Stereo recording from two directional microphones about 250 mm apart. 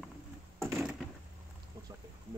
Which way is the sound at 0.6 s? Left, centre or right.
Centre.